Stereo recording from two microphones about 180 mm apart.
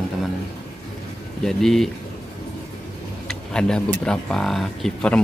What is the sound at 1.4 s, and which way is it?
Speech, centre (ahead or behind).